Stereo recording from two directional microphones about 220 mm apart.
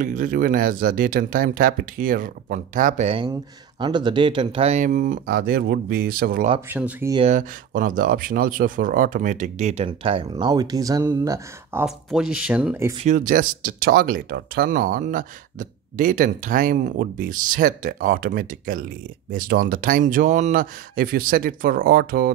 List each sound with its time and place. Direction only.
0.0 s speech: 35° right (ahead or behind)
6.7 s speech: 10° right (ahead or behind)
7.2 s speech: 35° right (ahead or behind); by 12.9 s 10° right (ahead or behind)
13.0 s speech: 35° right (ahead or behind)